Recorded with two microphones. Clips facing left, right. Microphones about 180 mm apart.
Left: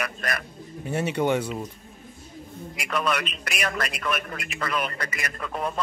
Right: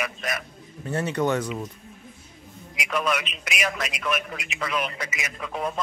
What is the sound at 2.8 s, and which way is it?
A man's voice, 5° right (ahead or behind).